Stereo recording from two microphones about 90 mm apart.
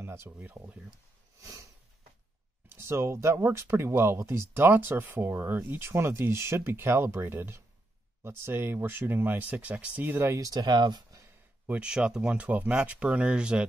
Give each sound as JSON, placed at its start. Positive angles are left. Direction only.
{"t": 0.0, "sound": "a sound", "side_deg": -30}
{"t": 0.6, "sound": "speech", "side_deg": -40}
{"t": 1.4, "sound": "a sound", "side_deg": -35}
{"t": 2.7, "sound": "speech", "side_deg": -30}
{"t": 10.3, "sound": "speech", "side_deg": -45}
{"t": 11.6, "sound": "speech", "side_deg": -15}